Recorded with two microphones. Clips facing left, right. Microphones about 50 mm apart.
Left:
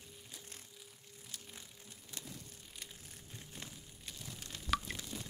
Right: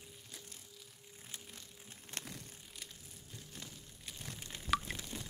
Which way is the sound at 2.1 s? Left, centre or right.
Right.